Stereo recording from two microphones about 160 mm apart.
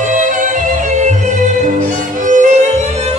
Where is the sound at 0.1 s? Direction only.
50° right (ahead or behind).